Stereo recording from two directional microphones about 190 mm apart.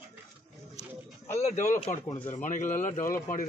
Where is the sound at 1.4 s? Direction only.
35° left (ahead or behind).